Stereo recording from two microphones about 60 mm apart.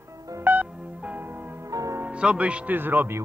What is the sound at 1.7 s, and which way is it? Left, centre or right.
Music, right.